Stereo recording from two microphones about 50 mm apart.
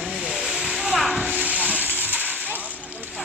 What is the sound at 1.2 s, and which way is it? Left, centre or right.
Hiss, right.